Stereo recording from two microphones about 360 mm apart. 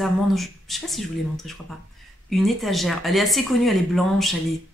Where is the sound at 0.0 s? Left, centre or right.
Centre.